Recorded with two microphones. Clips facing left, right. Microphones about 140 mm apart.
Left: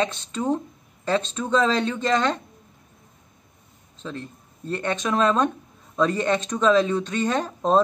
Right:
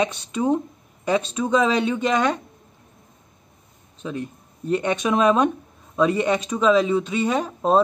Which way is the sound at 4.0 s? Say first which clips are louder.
Right 5 dB; 15° right (ahead or behind).